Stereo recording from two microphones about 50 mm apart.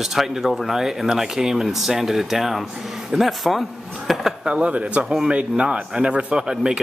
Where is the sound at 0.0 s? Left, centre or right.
Centre.